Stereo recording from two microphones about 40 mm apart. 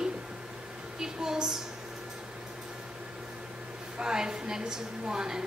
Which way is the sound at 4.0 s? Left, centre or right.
Centre.